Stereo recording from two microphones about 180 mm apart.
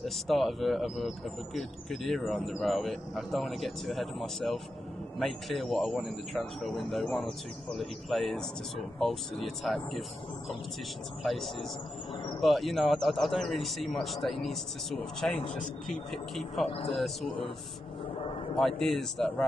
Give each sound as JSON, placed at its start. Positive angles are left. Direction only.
{"t": 0.0, "sound": "speech", "side_deg": 0}
{"t": 11.2, "sound": "speech", "side_deg": 0}
{"t": 16.6, "sound": "a man's voice", "side_deg": 35}
{"t": 16.9, "sound": "speech", "side_deg": 0}
{"t": 18.6, "sound": "speech", "side_deg": 0}